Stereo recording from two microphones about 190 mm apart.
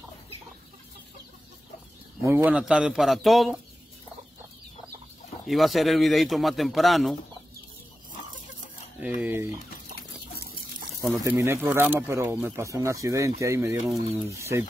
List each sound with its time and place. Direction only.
2.2 s a man's voice: 10° right (ahead or behind)
5.5 s a man's voice: centre (ahead or behind)
9.0 s speech: 5° right (ahead or behind)
10.4 s a sound: 50° right (ahead or behind)
11.0 s speech: 15° right (ahead or behind)